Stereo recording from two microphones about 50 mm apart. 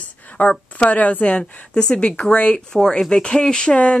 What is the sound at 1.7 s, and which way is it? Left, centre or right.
Speech, centre.